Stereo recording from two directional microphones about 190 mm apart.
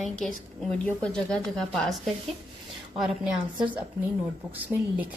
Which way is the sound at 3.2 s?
5° right (ahead or behind).